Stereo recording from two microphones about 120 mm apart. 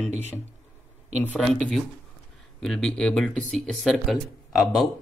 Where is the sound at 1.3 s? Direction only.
5° left (ahead or behind).